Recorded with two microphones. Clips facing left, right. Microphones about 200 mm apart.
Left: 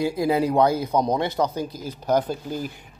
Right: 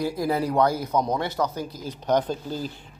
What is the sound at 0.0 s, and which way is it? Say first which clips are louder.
Speech: left 3 dB; 20° left (ahead or behind).